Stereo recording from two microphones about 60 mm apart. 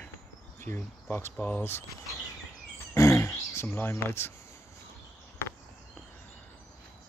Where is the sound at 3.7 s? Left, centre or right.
Left.